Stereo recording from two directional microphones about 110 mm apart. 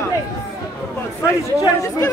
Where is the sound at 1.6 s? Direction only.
30° left (ahead or behind).